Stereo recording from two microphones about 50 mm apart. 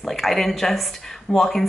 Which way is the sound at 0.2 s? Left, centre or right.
Centre.